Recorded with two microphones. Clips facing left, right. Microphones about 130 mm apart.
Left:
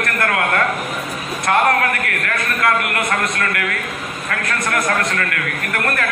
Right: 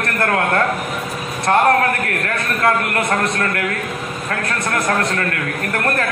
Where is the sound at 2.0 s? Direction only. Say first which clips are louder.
Right 1 dB; 30° right (ahead or behind).